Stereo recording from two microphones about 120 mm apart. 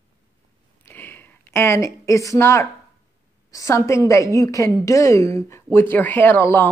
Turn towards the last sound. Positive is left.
turn(degrees=15)  # may be behind; listen again after turning